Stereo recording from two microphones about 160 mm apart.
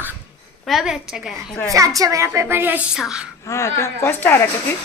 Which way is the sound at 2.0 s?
20° right (ahead or behind).